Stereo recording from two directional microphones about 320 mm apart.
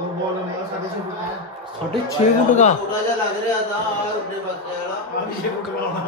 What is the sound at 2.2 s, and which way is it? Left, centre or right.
Speech, centre.